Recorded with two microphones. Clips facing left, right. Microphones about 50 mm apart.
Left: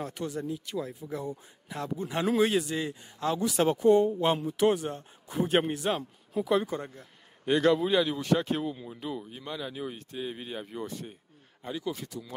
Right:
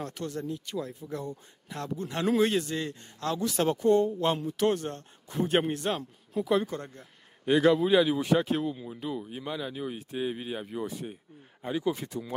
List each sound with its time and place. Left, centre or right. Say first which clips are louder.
0.0 s speech: left 1 dB; centre
11.6 s speech: right 5 dB; right